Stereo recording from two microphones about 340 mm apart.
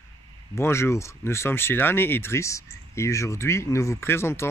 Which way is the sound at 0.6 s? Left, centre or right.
Centre.